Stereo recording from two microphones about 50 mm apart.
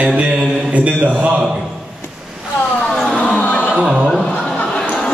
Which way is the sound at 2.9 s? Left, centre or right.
Centre.